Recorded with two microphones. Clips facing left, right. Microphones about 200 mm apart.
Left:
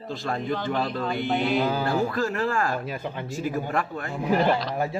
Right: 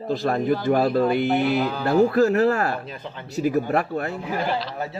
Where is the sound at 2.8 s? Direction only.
10° left (ahead or behind).